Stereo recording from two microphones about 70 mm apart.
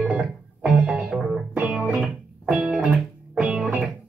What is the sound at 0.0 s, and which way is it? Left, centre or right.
Music, centre.